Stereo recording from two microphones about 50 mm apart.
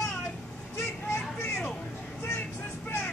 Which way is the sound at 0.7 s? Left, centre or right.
Left.